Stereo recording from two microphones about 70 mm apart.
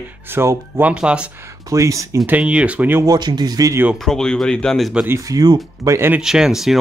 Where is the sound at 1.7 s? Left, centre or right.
Right.